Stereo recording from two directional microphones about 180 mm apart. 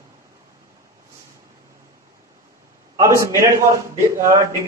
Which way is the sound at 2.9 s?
15° right (ahead or behind).